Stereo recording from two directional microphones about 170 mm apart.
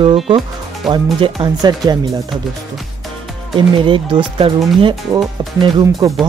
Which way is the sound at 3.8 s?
30° right (ahead or behind).